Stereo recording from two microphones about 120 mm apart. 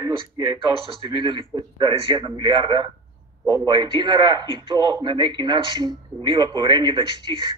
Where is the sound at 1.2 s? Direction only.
40° right (ahead or behind).